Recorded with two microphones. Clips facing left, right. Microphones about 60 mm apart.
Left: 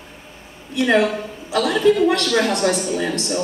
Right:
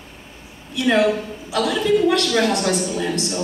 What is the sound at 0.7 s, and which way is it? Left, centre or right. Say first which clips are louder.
A man's voice: even; left.